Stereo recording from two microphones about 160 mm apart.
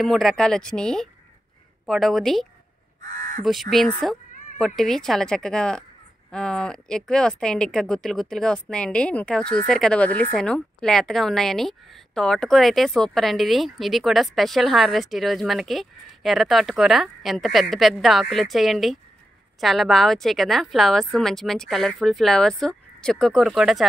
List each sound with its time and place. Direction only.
0.0 s a woman's voice: centre (ahead or behind)
3.1 s crow: 50° right (ahead or behind)
3.7 s a woman's voice: centre (ahead or behind)